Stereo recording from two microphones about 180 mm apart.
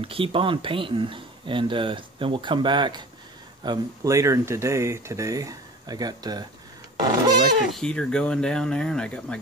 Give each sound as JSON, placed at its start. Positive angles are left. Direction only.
{"t": 0.0, "sound": "speech", "side_deg": -30}
{"t": 7.7, "sound": "speech", "side_deg": 5}